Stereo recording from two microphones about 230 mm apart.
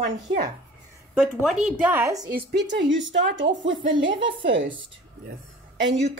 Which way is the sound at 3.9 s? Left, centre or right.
Right.